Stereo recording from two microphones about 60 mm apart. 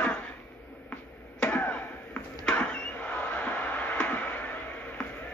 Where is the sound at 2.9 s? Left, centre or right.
Left.